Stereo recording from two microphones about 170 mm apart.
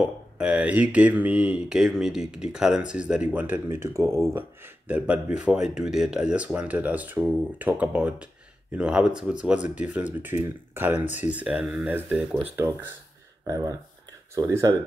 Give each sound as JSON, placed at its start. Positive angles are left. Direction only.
{"t": 0.0, "sound": "speech", "side_deg": -5}
{"t": 13.5, "sound": "speech", "side_deg": -20}